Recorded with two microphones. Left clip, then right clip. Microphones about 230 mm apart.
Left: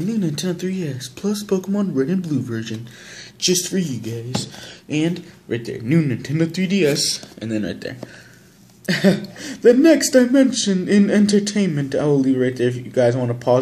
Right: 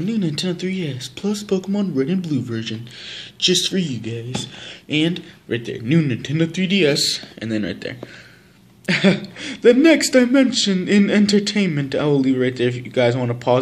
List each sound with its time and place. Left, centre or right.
0.0 s speech: centre
3.3 s speech: right
3.9 s speech: centre